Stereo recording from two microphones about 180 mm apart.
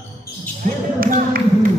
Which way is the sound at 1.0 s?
50° right (ahead or behind).